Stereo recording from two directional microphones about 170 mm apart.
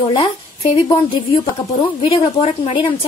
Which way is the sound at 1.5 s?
30° left (ahead or behind).